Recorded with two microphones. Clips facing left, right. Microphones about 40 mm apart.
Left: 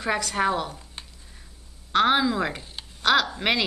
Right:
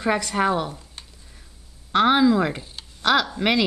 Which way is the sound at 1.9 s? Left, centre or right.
Centre.